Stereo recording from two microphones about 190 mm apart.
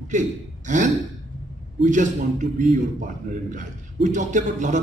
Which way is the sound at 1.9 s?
40° right (ahead or behind).